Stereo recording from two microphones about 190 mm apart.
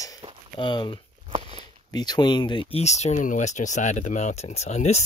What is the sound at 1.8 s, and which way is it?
Speech, 20° left (ahead or behind).